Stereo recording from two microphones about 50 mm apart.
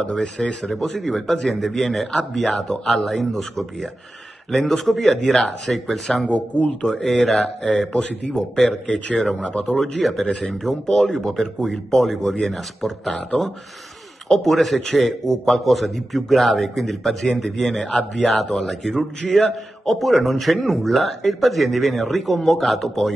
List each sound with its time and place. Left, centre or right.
0.0 s a man's voice: centre
6.2 s a man's voice: left
6.9 s a man's voice: centre
7.9 s a man's voice: centre
8.5 s speech: centre
10.2 s a man's voice: centre
14.3 s a man's voice: centre